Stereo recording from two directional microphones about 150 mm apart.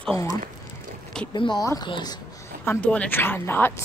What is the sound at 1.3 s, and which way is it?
Speech, 30° left (ahead or behind).